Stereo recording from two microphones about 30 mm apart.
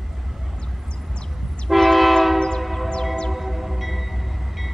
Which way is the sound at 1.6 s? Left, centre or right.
Centre.